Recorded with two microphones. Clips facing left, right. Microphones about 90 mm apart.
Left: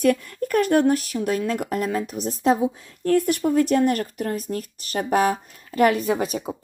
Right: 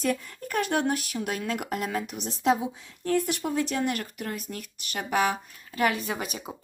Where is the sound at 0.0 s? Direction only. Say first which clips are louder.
Left 8 dB; 55° left (ahead or behind).